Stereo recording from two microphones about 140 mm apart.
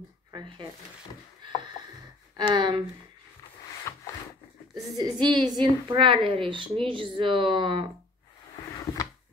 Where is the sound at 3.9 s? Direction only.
20° left (ahead or behind).